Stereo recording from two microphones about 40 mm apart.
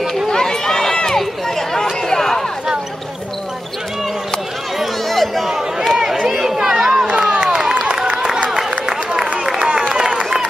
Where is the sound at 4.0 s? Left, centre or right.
Centre.